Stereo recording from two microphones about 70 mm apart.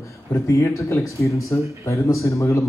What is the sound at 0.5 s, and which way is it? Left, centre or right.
A man's voice, left.